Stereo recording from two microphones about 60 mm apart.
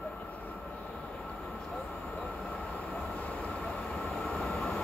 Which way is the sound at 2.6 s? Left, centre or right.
Centre.